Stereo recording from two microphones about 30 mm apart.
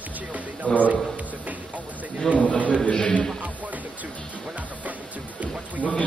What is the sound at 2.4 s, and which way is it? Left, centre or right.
Speech, left.